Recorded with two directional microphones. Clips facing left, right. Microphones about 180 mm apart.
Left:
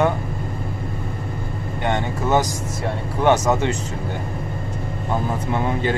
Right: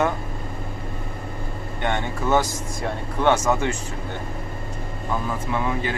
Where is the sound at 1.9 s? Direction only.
20° left (ahead or behind).